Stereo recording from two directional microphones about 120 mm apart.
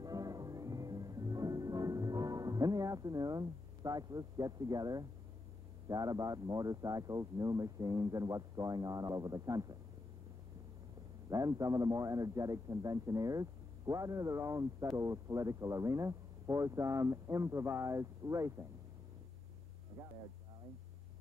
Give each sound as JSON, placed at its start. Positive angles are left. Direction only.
{"t": 0.0, "sound": "music", "side_deg": -30}
{"t": 5.9, "sound": "speech", "side_deg": -30}
{"t": 11.2, "sound": "speech", "side_deg": -30}
{"t": 20.0, "sound": "music", "side_deg": -25}